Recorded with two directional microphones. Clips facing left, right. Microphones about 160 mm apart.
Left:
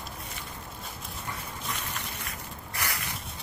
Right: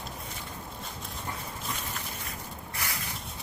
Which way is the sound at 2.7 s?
75° left (ahead or behind).